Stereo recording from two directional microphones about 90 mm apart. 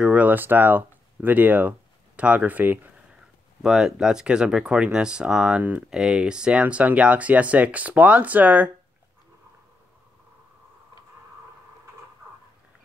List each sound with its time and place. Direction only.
0.0 s speech: 15° right (ahead or behind)
3.6 s speech: 5° right (ahead or behind)
5.6 s speech: 20° right (ahead or behind)
5.9 s speech: 5° right (ahead or behind)